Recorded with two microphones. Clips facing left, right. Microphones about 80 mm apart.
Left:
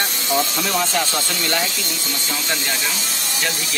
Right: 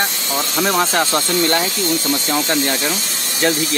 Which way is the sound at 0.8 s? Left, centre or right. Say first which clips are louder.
Right 5 dB; right.